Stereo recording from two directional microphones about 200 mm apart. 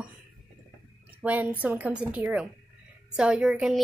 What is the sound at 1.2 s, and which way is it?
A woman's voice, 10° right (ahead or behind).